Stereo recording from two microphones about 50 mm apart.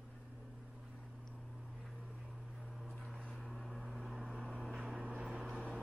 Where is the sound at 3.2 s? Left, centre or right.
Centre.